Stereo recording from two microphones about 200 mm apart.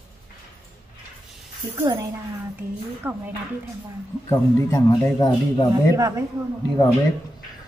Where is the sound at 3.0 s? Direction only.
10° right (ahead or behind).